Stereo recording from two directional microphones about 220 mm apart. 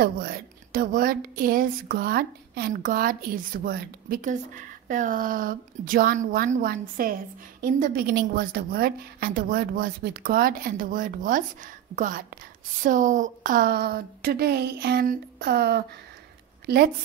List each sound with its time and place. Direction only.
0.0 s a woman's voice: 45° right (ahead or behind)